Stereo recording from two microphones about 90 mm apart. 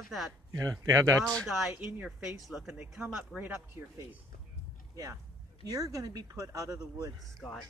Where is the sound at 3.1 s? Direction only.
20° right (ahead or behind).